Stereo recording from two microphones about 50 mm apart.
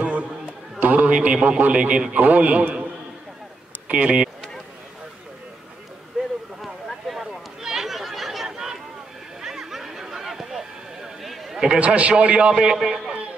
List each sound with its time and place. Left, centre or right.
0.7 s a man's voice: right
3.9 s a man's voice: right
6.6 s a sound: centre
11.8 s a man's voice: right; by 13.1 s centre